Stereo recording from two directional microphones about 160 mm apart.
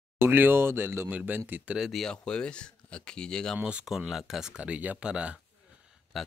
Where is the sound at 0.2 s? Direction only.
15° right (ahead or behind); by 3.5 s 5° left (ahead or behind).